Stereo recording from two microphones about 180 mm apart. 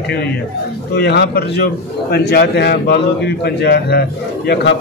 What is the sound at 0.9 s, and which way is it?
A man's voice, 65° left (ahead or behind).